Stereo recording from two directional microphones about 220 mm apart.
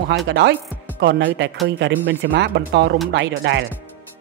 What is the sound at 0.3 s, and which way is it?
Speech, 55° right (ahead or behind).